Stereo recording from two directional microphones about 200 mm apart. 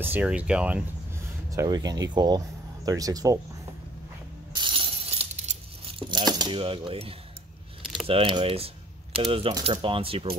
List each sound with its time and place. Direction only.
0.0 s speech: 10° right (ahead or behind)
1.5 s speech: 15° right (ahead or behind)
4.6 s coin: 25° right (ahead or behind)